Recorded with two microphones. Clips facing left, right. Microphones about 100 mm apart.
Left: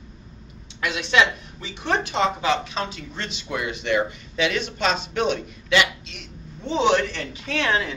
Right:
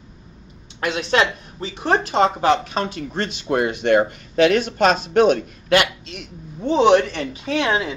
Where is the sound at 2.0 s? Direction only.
45° right (ahead or behind).